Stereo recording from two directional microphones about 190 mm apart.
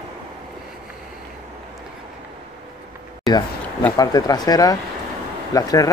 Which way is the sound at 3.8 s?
20° left (ahead or behind).